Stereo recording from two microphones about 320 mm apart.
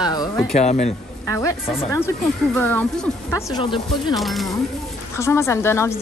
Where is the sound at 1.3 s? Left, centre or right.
Centre.